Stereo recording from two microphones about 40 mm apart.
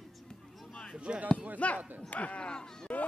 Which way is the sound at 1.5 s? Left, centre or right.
Left.